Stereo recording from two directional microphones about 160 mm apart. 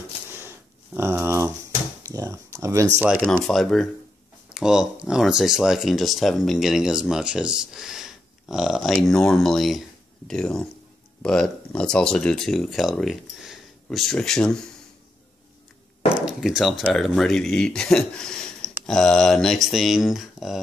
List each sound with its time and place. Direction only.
0.3 s a sound: 15° right (ahead or behind)
3.3 s speech: 5° left (ahead or behind)
16.3 s speech: 5° right (ahead or behind)